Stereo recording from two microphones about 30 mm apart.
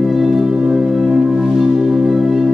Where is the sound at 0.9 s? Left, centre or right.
Centre.